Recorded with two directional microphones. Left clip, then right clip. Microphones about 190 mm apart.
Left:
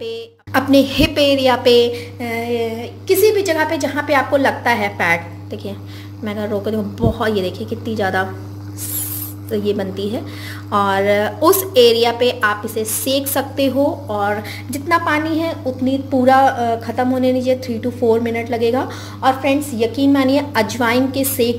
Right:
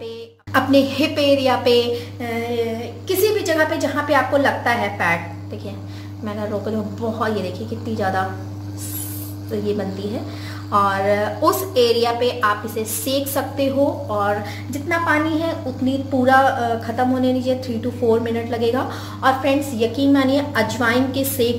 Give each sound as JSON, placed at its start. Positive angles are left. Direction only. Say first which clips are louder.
{"t": 0.0, "sound": "a woman's voice", "louder": "left 5 dB", "side_deg": 40}
{"t": 6.2, "sound": "a woman's voice", "louder": "left 4 dB", "side_deg": 45}
{"t": 9.5, "sound": "a woman's voice", "louder": "left 4 dB", "side_deg": 45}